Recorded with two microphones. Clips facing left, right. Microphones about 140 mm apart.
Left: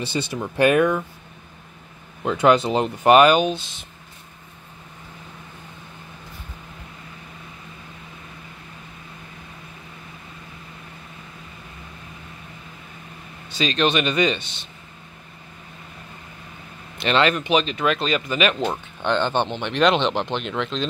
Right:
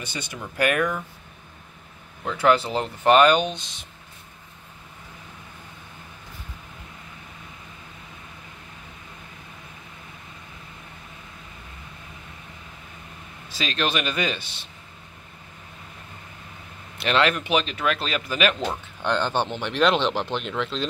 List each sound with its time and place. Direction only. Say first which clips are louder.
0.0 s speech: left 8 dB; 30° left (ahead or behind)
2.2 s speech: left 3 dB; 20° left (ahead or behind); by 3.8 s 5° left (ahead or behind)
13.5 s speech: left 5 dB; centre (ahead or behind)
17.0 s speech: left 2 dB; centre (ahead or behind)